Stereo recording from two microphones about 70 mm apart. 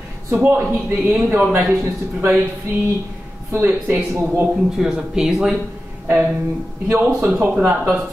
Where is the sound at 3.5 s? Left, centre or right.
Right.